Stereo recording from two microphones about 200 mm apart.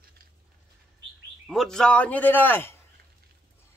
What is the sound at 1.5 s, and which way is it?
Speech, centre (ahead or behind).